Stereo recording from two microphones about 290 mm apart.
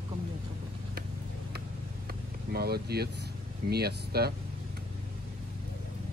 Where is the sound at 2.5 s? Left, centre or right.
Right.